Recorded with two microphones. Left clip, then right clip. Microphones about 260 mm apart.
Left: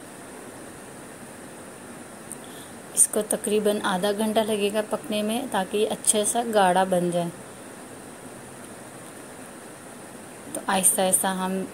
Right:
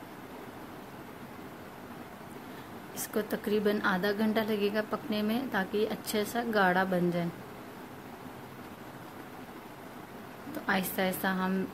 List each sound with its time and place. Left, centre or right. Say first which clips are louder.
3.0 s a woman's voice: left 8 dB; centre
10.7 s a woman's voice: left 7 dB; centre